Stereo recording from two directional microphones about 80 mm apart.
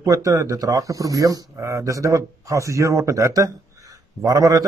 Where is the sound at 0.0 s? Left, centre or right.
Right.